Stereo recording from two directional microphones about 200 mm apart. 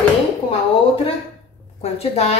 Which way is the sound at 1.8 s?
30° left (ahead or behind).